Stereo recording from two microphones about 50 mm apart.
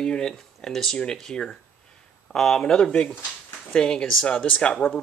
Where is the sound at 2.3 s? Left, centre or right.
Centre.